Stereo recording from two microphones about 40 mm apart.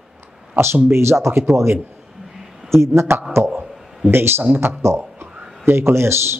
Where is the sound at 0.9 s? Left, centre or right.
Right.